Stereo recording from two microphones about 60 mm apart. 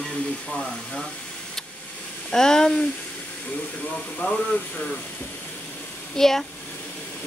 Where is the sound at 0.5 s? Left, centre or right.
Centre.